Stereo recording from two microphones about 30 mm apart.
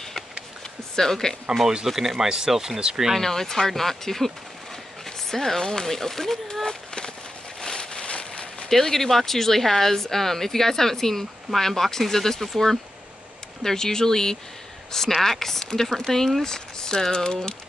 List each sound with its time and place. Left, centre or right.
0.9 s speech: centre
2.0 s speech: centre
3.2 s speech: centre
5.3 s speech: centre
7.6 s a sound: left
8.0 s a sound: left
8.6 s speech: centre
15.9 s speech: centre
16.4 s speech: left